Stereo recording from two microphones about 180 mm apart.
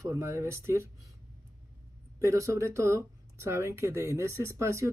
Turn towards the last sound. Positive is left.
turn(degrees=-15)  # may be behind; listen again after turning